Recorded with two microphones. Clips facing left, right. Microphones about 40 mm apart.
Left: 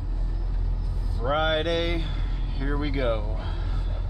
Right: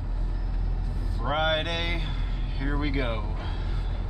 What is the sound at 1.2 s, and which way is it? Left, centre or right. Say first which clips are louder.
Vehicle: left 2 dB; centre.